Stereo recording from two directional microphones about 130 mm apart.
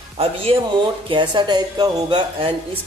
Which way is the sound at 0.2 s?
50° right (ahead or behind).